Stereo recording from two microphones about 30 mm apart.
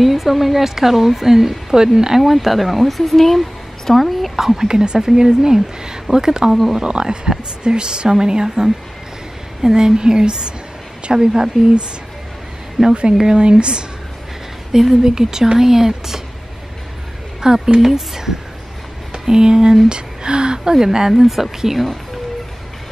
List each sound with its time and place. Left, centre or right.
0.0 s a woman's voice: centre
2.2 s a woman's voice: centre
4.6 s speech: right
12.8 s a woman's voice: centre
13.4 s speech: right
14.7 s a woman's voice: centre
17.4 s speech: right
17.7 s a woman's voice: centre
21.1 s a woman's voice: centre